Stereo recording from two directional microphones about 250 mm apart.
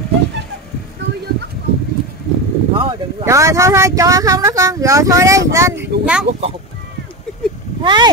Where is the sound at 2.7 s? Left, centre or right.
Right.